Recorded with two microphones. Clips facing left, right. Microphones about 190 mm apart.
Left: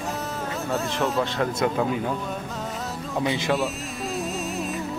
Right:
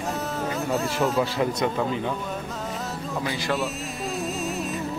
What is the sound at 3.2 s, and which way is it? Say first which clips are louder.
Speech: left 4 dB; 20° left (ahead or behind).